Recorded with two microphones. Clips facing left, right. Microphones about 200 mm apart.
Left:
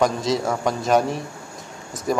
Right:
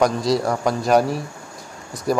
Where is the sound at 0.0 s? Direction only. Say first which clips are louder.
Right 2 dB; centre (ahead or behind).